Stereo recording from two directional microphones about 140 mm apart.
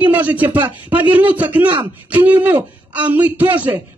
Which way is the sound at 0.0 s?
10° right (ahead or behind).